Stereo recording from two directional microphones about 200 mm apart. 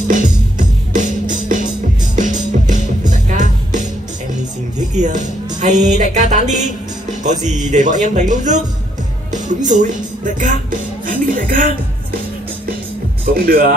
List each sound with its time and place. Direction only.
0.1 s music: 40° right (ahead or behind)
5.0 s music: 40° right (ahead or behind)
6.1 s speech: 35° right (ahead or behind)
9.7 s speech: 40° right (ahead or behind)
13.2 s speech: 45° right (ahead or behind)